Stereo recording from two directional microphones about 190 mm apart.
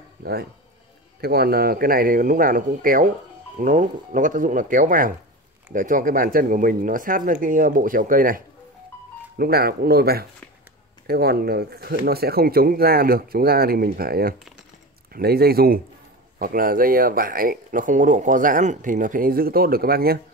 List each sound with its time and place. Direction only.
0.2 s speech: 55° right (ahead or behind)
9.4 s speech: 55° right (ahead or behind)